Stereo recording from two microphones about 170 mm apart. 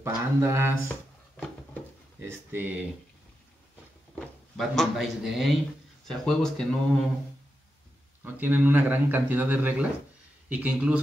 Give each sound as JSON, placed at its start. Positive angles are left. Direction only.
{"t": 0.0, "sound": "a man's voice", "side_deg": -15}
{"t": 2.1, "sound": "speech", "side_deg": -10}
{"t": 4.1, "sound": "speech", "side_deg": 0}
{"t": 8.2, "sound": "a man's voice", "side_deg": -10}